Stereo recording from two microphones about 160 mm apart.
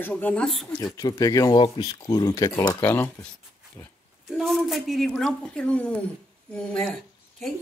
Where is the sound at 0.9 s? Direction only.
20° left (ahead or behind).